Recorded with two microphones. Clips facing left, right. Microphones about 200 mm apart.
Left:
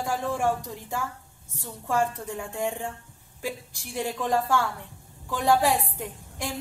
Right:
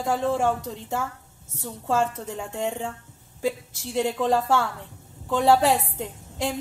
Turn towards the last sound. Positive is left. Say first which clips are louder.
# right 5 dB
turn(degrees=-20)  # may be behind; listen again after turning